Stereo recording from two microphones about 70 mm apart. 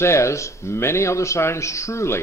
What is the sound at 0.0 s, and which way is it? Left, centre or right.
Speech, left.